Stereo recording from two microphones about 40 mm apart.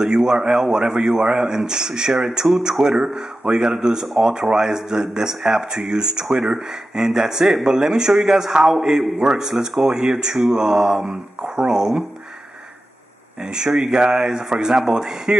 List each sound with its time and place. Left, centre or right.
0.0 s speech: centre
2.8 s speech: centre
13.4 s speech: centre